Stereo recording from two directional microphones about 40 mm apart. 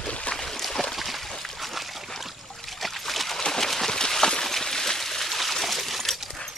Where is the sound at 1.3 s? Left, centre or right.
Centre.